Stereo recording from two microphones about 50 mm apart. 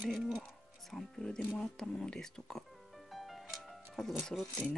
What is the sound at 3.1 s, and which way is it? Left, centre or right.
Music, centre.